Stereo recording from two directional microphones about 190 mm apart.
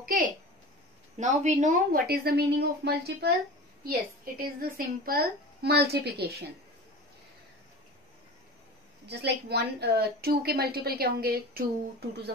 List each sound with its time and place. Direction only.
0.0 s a sound: 45° right (ahead or behind)
1.1 s a woman's voice: 40° right (ahead or behind); by 6.3 s 60° right (ahead or behind)
9.0 s a woman's voice: 60° right (ahead or behind)